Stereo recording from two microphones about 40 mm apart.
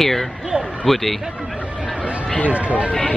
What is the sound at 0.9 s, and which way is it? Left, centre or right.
Speech, centre.